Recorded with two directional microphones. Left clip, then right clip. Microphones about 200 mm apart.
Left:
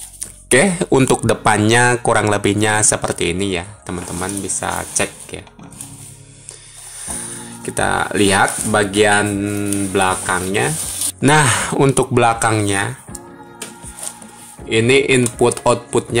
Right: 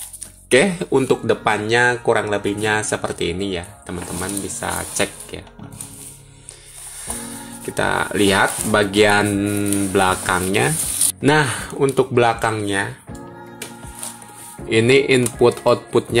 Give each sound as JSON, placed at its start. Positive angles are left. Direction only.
{"t": 0.5, "sound": "speech", "side_deg": 15}
{"t": 0.9, "sound": "speech", "side_deg": 35}
{"t": 7.6, "sound": "speech", "side_deg": 10}
{"t": 8.9, "sound": "speech", "side_deg": 0}
{"t": 11.1, "sound": "speech", "side_deg": 20}
{"t": 11.7, "sound": "speech", "side_deg": 30}
{"t": 14.7, "sound": "speech", "side_deg": 0}